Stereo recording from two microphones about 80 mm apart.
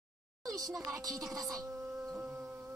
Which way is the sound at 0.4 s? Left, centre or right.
Right.